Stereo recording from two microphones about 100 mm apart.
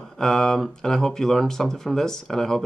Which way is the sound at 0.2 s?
5° left (ahead or behind).